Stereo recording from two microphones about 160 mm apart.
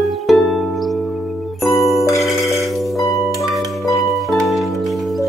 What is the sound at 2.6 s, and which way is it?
Music, centre (ahead or behind).